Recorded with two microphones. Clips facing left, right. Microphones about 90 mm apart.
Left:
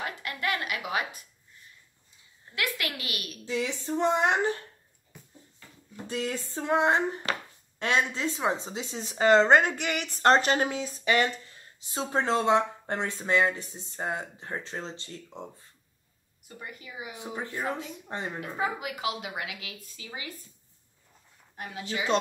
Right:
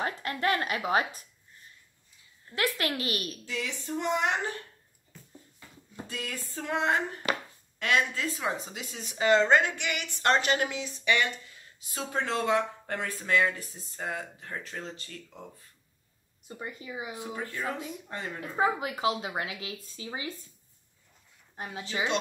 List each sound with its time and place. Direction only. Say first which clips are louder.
0.0 s speech: right 3 dB; 35° right (ahead or behind)
2.5 s speech: right 3 dB; 35° right (ahead or behind)
3.4 s a woman's voice: left 5 dB; 30° left (ahead or behind)
5.1 s a sound: left 1 dB; 15° left (ahead or behind)
6.0 s a woman's voice: left 7 dB; 30° left (ahead or behind)
16.4 s speech: right 4 dB; 25° right (ahead or behind)
17.2 s speech: left 4 dB; 25° left (ahead or behind)
18.6 s speech: right 4 dB; 30° right (ahead or behind)
21.9 s speech: right 2 dB; 30° right (ahead or behind)